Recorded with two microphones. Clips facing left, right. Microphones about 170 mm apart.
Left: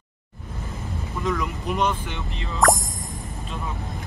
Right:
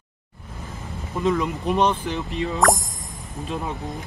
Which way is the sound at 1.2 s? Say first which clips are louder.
Right 5 dB; 20° right (ahead or behind).